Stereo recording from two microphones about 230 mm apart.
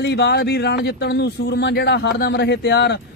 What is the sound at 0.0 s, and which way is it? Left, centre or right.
A man's voice, left.